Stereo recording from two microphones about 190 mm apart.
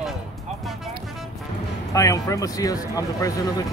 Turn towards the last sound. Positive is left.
turn(degrees=15)  # may be behind; listen again after turning